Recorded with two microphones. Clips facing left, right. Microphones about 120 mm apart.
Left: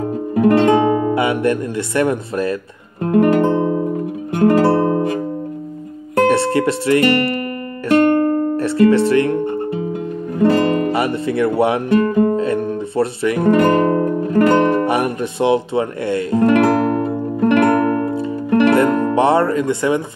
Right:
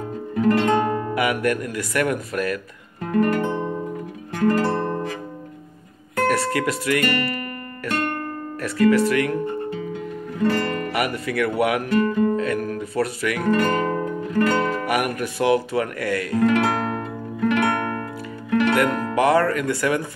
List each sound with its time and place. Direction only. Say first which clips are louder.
0.4 s music: left 6 dB; 60° left (ahead or behind)
1.1 s speech: left 5 dB; 25° left (ahead or behind)
3.0 s guitar: left 7 dB; 60° left (ahead or behind)
4.4 s music: left 7 dB; 65° left (ahead or behind)
4.8 s music: left 9 dB; 55° left (ahead or behind)
6.2 s speech: left 6 dB; 25° left (ahead or behind)
7.9 s music: left 14 dB; 50° left (ahead or behind)
8.5 s speech: left 3 dB; 30° left (ahead or behind)
11.9 s speech: left 5 dB; 55° left (ahead or behind)
12.3 s guitar: left 5 dB; 30° left (ahead or behind)
13.5 s music: left 7 dB; 50° left (ahead or behind)
14.9 s speech: left 5 dB; 25° left (ahead or behind)
17.0 s music: left 8 dB; 40° left (ahead or behind)
18.9 s speech: left 4 dB; 25° left (ahead or behind)